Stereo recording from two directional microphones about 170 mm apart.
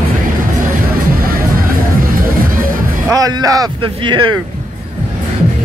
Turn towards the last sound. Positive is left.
turn(degrees=-30)  # may be behind; listen again after turning